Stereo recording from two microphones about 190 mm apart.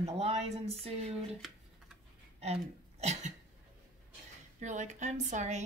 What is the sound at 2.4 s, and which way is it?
Speech, 35° right (ahead or behind).